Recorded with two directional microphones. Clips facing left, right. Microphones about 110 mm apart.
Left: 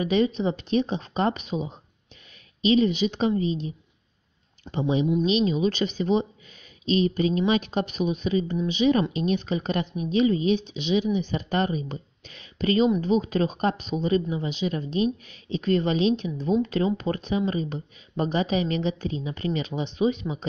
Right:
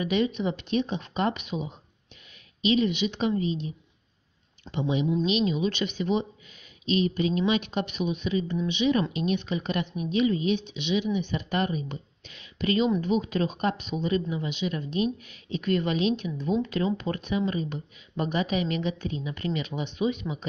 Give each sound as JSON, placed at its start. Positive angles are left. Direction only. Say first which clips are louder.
{"t": 0.0, "sound": "speech", "louder": "left 3 dB", "side_deg": 35}